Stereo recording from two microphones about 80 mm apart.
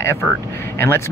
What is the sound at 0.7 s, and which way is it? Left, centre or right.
Speech, left.